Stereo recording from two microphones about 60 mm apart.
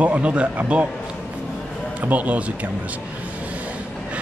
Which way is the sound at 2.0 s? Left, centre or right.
Right.